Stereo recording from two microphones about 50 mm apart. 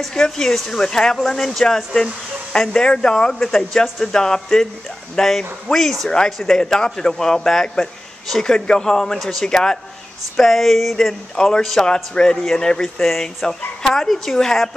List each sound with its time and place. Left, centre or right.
0.0 s speech: centre
2.7 s speech: centre
3.3 s a woman's voice: centre
6.0 s speech: centre
6.3 s a woman's voice: centre
6.6 s speech: centre
8.5 s speech: centre
9.5 s speech: centre
10.3 s a woman's voice: centre
11.3 s speech: centre
12.8 s a woman's voice: centre
13.4 s a woman's voice: centre